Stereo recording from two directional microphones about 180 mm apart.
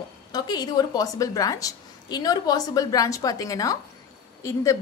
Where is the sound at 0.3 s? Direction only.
20° left (ahead or behind).